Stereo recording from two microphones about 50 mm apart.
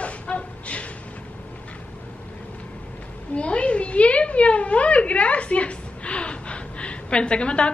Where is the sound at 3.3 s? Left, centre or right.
Left.